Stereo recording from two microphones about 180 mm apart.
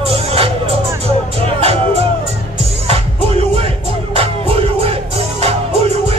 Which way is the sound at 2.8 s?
35° right (ahead or behind).